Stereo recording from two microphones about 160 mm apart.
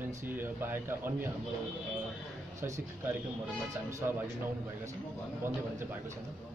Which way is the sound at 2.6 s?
20° right (ahead or behind).